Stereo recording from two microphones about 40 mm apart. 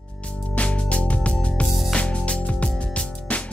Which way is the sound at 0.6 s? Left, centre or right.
Left.